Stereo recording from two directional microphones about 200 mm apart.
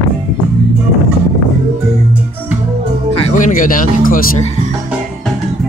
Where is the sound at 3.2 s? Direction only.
40° left (ahead or behind).